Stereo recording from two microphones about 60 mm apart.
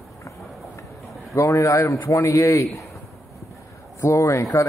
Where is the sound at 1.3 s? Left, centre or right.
Left.